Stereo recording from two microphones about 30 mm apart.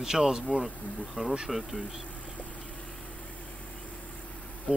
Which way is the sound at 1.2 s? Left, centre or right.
Right.